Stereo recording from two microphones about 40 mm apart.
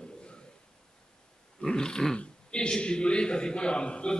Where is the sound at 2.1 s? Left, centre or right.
Left.